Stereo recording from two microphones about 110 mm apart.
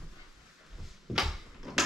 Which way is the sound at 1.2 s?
Centre (ahead or behind).